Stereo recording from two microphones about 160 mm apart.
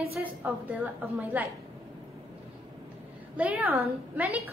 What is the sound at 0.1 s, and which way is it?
A woman's voice, 10° right (ahead or behind).